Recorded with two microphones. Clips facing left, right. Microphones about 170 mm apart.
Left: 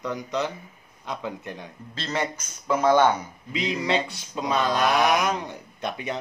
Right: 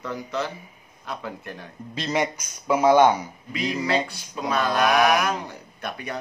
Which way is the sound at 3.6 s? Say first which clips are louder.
Right 1 dB; 20° left (ahead or behind).